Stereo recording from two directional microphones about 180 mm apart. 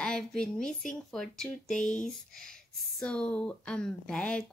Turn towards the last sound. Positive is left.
turn(degrees=5)  # may be behind; listen again after turning